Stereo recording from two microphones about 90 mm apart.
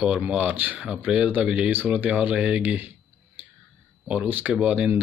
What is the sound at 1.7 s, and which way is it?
Speech, 20° right (ahead or behind).